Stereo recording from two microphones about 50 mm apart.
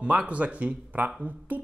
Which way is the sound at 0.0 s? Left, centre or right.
Right.